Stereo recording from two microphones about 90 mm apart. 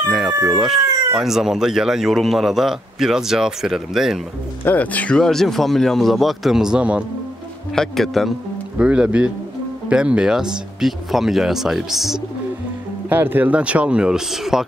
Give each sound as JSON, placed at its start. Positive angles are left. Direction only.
{"t": 0.3, "sound": "speech", "side_deg": -35}
{"t": 0.6, "sound": "speech", "side_deg": -5}
{"t": 4.6, "sound": "speech", "side_deg": 15}
{"t": 7.7, "sound": "speech", "side_deg": 5}
{"t": 8.7, "sound": "speech", "side_deg": -10}
{"t": 13.1, "sound": "speech", "side_deg": -20}